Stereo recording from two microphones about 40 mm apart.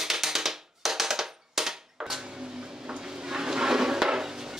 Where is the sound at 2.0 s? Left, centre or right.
Centre.